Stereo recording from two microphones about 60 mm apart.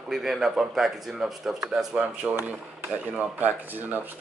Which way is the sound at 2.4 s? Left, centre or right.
Right.